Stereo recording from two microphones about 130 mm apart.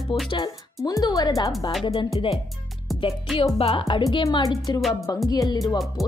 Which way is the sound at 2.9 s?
Centre (ahead or behind).